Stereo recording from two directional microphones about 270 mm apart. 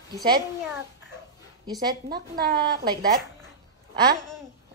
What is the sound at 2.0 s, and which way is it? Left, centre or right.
Speech, right.